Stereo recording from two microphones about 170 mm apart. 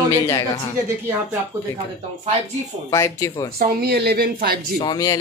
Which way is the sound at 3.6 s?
70° right (ahead or behind).